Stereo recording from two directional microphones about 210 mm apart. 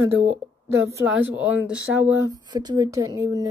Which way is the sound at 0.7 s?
15° right (ahead or behind).